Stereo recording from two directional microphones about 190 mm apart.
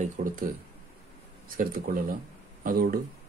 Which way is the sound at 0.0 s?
45° right (ahead or behind).